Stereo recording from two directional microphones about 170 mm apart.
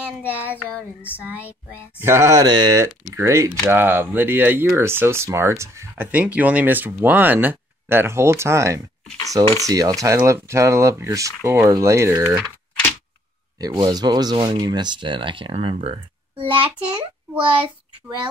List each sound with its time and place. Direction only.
0.2 s speech: 10° right (ahead or behind)
13.6 s speech: 25° right (ahead or behind)